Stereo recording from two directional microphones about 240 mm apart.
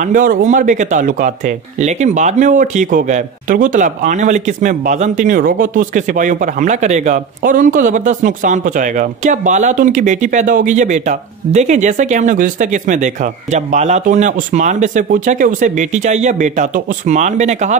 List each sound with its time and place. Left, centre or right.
0.1 s speech: right